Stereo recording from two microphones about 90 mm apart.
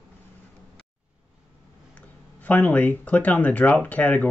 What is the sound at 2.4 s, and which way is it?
Speech, 20° left (ahead or behind).